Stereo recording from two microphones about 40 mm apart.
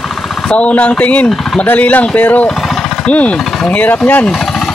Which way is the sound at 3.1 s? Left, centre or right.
Left.